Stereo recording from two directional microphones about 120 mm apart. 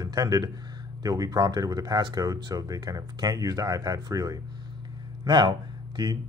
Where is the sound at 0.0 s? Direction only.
30° right (ahead or behind).